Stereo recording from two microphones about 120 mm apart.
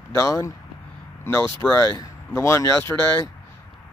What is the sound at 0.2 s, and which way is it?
Speech, 25° left (ahead or behind).